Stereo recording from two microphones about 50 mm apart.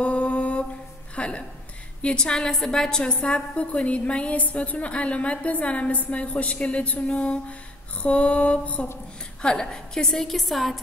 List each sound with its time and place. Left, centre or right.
0.0 s mantra: left
1.1 s music: left
2.0 s a woman's voice: centre